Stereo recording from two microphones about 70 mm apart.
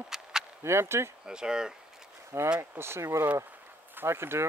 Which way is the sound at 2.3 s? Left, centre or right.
Right.